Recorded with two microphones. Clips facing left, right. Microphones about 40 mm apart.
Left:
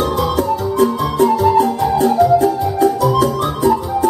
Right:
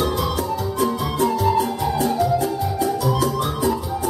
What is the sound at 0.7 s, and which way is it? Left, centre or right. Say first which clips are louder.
Music: left 7 dB; centre.